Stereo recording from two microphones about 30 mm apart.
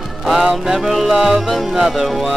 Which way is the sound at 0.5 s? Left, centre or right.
Centre.